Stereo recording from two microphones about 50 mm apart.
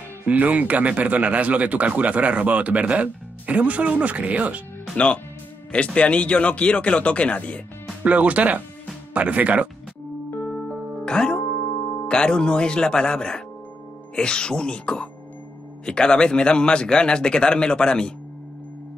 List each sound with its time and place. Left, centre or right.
0.2 s speech: right
4.9 s speech: left
8.0 s speech: right
11.1 s music: centre
12.1 s speech: centre